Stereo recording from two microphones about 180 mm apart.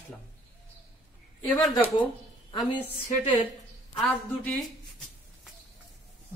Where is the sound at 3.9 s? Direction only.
5° left (ahead or behind).